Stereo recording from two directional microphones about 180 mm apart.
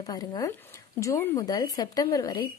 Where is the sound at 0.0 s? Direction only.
20° left (ahead or behind).